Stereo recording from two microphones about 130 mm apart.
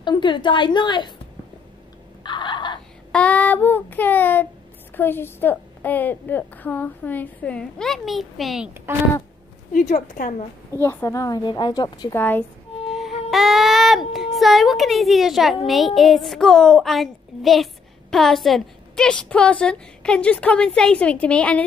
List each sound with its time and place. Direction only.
0.0 s a woman's voice: 35° left (ahead or behind)
2.2 s fowl: 35° left (ahead or behind)
3.1 s a woman's voice: 10° left (ahead or behind)
8.9 s speech: 20° right (ahead or behind)
9.7 s speech: 80° left
10.7 s a woman's voice: 15° left (ahead or behind)
12.2 s a woman's voice: 15° left (ahead or behind)
12.9 s a sound: centre (ahead or behind)
15.6 s a woman's voice: centre (ahead or behind)